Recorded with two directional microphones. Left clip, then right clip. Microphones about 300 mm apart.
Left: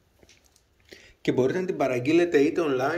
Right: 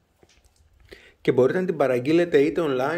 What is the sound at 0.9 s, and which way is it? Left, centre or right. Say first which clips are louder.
Speech: right 5 dB; centre.